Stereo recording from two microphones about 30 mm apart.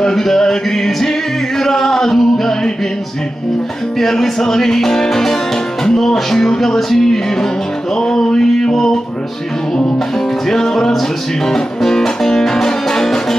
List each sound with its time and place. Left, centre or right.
0.1 s music: centre
4.0 s music: centre
7.9 s a sound: left
10.5 s music: centre